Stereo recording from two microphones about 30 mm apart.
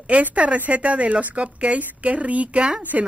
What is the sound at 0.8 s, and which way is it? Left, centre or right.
Speech, right.